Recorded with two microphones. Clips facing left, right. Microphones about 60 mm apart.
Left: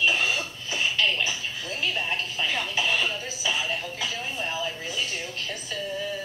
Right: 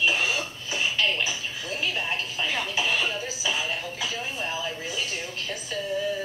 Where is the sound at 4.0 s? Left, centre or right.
Centre.